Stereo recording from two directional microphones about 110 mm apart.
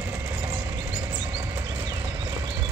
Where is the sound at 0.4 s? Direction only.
35° right (ahead or behind).